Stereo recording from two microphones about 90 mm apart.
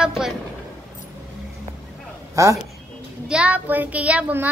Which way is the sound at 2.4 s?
35° right (ahead or behind).